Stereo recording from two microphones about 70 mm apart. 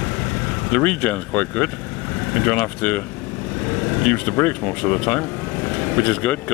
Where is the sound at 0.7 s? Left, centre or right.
Left.